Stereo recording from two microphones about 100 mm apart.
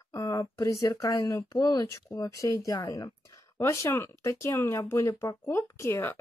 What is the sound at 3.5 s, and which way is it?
Speech, 25° left (ahead or behind).